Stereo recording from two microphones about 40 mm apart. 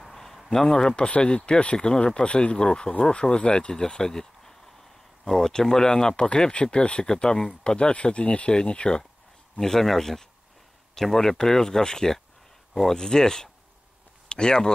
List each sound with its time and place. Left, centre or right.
0.0 s a man's voice: centre; by 9.0 s left
9.6 s speech: centre